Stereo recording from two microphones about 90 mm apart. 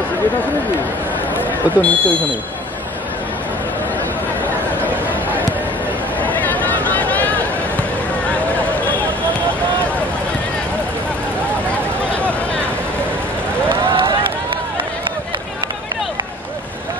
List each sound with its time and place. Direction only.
1.8 s speech: 15° left (ahead or behind)
6.2 s a sound: 20° left (ahead or behind)
13.8 s run: 65° right (ahead or behind)